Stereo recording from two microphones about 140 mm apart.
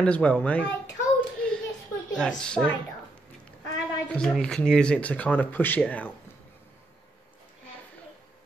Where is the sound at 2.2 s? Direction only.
5° left (ahead or behind).